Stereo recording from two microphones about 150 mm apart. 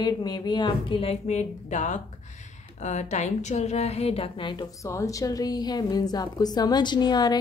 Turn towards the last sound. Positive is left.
turn(degrees=30)  # may be behind; listen again after turning